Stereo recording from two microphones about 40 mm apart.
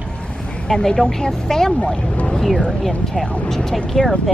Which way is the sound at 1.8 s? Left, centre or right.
Left.